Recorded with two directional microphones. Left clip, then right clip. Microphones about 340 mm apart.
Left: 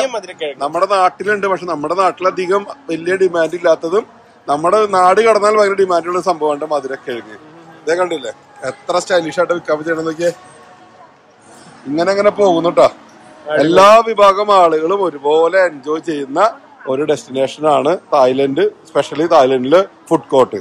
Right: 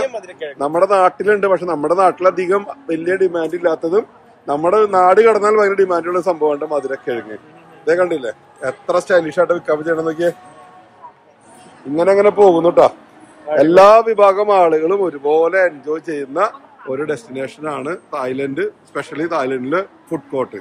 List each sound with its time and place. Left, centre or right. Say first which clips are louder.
0.0 s speech: left 4 dB; left
0.6 s speech: right 1 dB; centre
11.9 s speech: right 1 dB; centre